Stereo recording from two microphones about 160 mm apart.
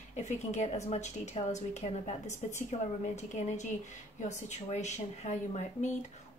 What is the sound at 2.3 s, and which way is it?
Speech, 20° left (ahead or behind).